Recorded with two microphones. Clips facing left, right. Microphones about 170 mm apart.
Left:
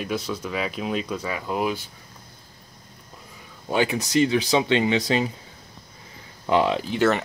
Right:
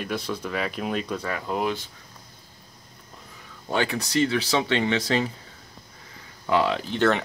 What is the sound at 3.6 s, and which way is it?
Speech, 15° left (ahead or behind).